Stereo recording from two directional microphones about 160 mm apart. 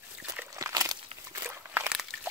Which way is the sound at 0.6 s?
20° right (ahead or behind).